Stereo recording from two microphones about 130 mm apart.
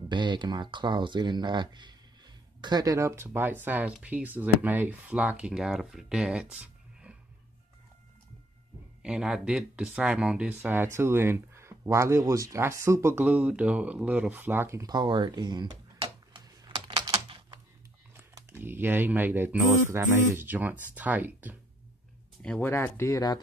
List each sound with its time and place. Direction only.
0.1 s speech: 35° right (ahead or behind); by 7.2 s 10° right (ahead or behind)
9.0 s speech: 5° right (ahead or behind)
10.6 s speech: 15° right (ahead or behind)
13.2 s speech: 10° right (ahead or behind); by 17.0 s 40° right (ahead or behind)
17.1 s typing: 40° right (ahead or behind)
18.1 s typing: 20° right (ahead or behind)
19.9 s speech: 20° right (ahead or behind)
22.4 s speech: 10° left (ahead or behind); by 23.4 s 25° left (ahead or behind)